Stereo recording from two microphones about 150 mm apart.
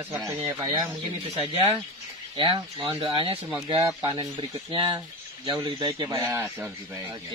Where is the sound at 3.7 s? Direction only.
20° right (ahead or behind).